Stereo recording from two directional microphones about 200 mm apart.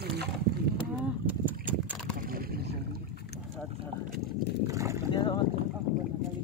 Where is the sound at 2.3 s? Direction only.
45° right (ahead or behind).